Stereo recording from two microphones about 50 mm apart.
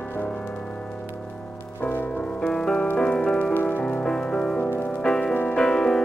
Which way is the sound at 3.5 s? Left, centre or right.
Left.